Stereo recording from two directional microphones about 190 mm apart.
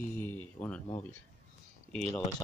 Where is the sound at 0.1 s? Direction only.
10° left (ahead or behind).